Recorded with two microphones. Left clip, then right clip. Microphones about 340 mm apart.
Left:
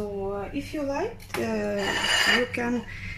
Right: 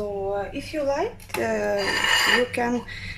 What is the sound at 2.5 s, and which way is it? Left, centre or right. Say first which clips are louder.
Speech: right 4 dB; centre.